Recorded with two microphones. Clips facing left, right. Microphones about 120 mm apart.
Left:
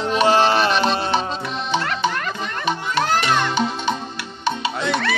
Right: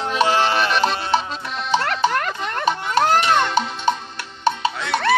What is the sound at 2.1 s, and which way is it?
Music, 55° right (ahead or behind).